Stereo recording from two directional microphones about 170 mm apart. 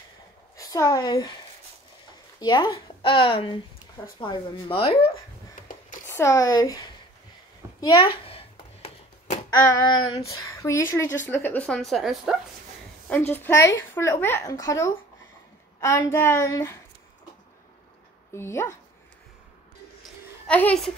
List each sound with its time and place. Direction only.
0.6 s a woman's voice: 20° left (ahead or behind)
2.4 s speech: 25° left (ahead or behind)
6.0 s speech: 15° left (ahead or behind)
7.8 s a sound: 25° left (ahead or behind)
9.5 s speech: 25° left (ahead or behind); by 12.4 s centre (ahead or behind)
13.3 s speech: 15° left (ahead or behind)
18.3 s speech: 15° left (ahead or behind)
20.4 s speech: 10° left (ahead or behind)